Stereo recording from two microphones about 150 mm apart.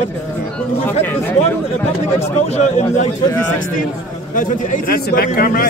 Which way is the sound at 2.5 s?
50° left (ahead or behind).